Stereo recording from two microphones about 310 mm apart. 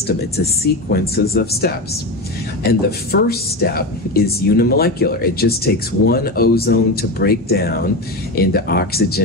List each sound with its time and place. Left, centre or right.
0.0 s a woman's voice: left